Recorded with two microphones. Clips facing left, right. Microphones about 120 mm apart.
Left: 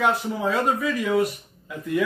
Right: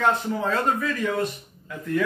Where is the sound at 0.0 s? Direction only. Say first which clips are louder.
Even; 10° left (ahead or behind).